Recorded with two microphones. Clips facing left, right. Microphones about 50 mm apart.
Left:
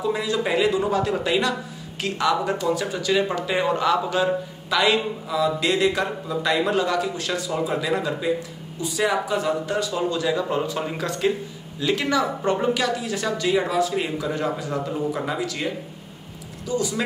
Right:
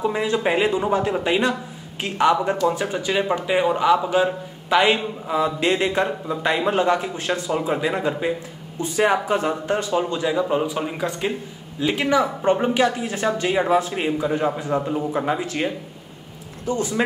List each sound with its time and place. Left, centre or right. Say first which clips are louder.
0.0 s a man's voice: right 2 dB; right
4.7 s a man's voice: right 2 dB; right; by 12.6 s centre
12.6 s a man's voice: right 3 dB; right